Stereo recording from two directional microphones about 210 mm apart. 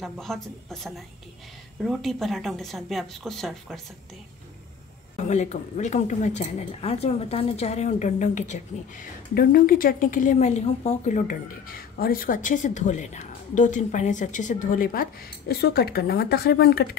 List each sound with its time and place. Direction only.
0.0 s speech: centre (ahead or behind)
5.1 s a woman's voice: 35° left (ahead or behind); by 16.9 s 50° left (ahead or behind)